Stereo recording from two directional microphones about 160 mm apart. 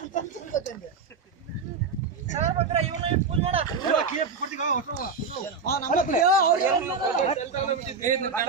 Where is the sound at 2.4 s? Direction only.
40° right (ahead or behind).